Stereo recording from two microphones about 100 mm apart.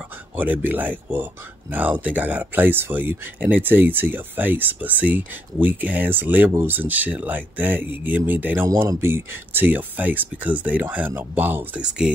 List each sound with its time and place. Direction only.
0.4 s speech: 20° right (ahead or behind)
8.6 s speech: 30° right (ahead or behind); by 12.1 s 10° right (ahead or behind)